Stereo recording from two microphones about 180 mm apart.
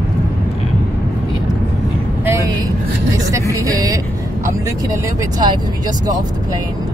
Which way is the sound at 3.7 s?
20° right (ahead or behind).